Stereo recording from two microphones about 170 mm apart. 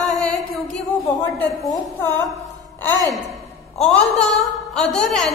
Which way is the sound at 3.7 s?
5° left (ahead or behind).